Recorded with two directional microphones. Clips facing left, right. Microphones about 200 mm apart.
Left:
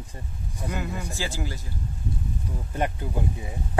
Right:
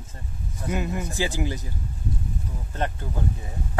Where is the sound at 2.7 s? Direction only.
15° left (ahead or behind).